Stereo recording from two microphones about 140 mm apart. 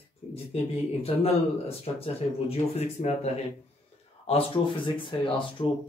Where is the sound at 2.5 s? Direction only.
50° left (ahead or behind).